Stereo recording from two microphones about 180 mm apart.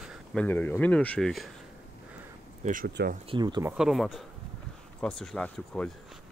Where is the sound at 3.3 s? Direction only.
25° right (ahead or behind).